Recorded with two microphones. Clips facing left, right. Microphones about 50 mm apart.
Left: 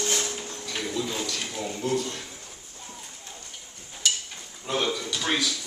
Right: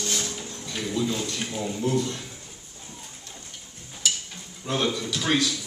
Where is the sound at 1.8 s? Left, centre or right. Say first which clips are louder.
Right 2 dB; right.